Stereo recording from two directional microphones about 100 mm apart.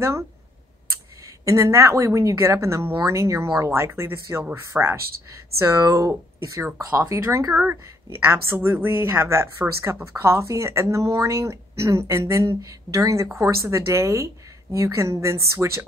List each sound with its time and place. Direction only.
1.2 s a woman's voice: 30° right (ahead or behind)